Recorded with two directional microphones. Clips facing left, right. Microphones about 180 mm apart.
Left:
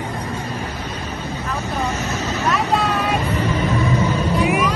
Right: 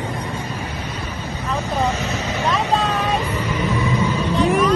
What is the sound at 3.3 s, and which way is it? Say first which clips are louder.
Vehicle: left 2 dB; 35° left (ahead or behind).